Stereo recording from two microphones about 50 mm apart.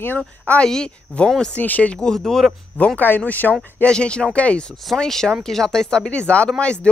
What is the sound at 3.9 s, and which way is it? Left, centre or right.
Speech, centre.